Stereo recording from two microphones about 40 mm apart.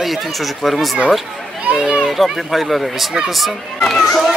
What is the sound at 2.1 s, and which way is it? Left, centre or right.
Speech, centre.